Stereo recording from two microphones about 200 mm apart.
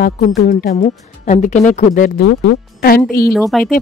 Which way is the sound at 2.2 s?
55° left (ahead or behind).